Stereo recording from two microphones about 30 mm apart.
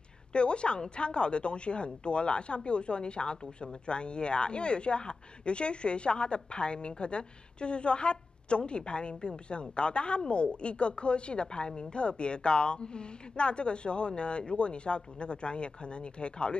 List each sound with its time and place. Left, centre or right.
0.3 s a woman's voice: left